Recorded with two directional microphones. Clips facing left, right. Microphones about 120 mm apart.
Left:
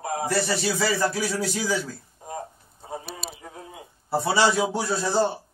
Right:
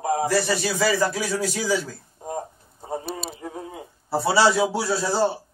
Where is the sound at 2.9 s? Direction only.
35° right (ahead or behind).